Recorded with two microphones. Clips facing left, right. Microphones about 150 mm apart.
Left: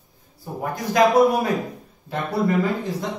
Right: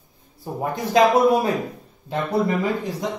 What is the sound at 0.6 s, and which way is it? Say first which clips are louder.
Speech: right 1 dB; 25° right (ahead or behind).